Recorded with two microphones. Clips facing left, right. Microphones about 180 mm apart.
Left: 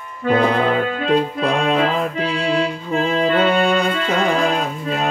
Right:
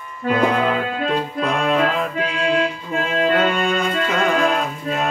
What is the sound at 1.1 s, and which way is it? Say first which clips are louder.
Music: left 6 dB; 35° left (ahead or behind).